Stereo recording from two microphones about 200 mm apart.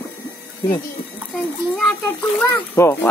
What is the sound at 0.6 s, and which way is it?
Speech, 20° left (ahead or behind).